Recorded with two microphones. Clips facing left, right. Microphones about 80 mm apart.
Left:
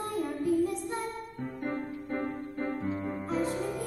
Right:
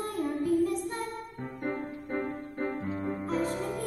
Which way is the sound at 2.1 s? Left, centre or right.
Right.